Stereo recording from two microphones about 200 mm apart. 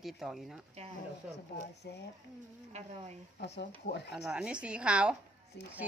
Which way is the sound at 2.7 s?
35° right (ahead or behind).